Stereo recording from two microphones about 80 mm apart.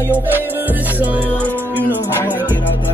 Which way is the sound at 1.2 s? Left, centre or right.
Centre.